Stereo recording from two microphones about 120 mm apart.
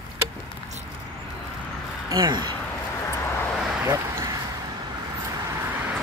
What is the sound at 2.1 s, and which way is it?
Speech, 35° right (ahead or behind).